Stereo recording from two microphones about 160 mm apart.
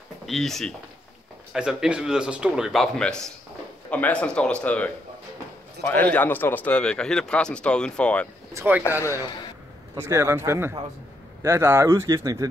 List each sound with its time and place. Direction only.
0.3 s speech: centre (ahead or behind)
8.5 s speech: 10° right (ahead or behind)
8.8 s speech: 20° left (ahead or behind)
9.9 s speech: 15° right (ahead or behind)